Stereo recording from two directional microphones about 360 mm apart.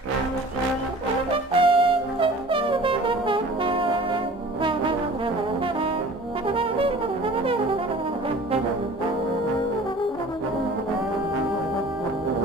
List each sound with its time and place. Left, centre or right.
1.5 s brass instrument: centre
6.4 s brass instrument: centre